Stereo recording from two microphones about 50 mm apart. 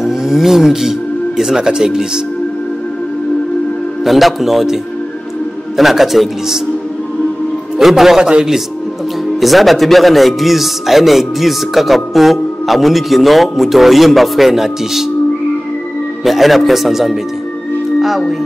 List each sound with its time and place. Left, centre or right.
0.0 s speech: centre
4.0 s a man's voice: centre
5.8 s a man's voice: centre
7.8 s a man's voice: centre
8.2 s a man's voice: centre
9.4 s a man's voice: centre
16.3 s a man's voice: centre
17.9 s music: centre